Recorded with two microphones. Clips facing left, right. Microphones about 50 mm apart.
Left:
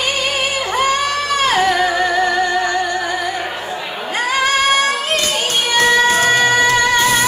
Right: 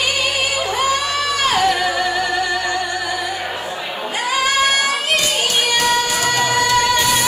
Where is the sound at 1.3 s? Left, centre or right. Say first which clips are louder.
Left 2 dB; left.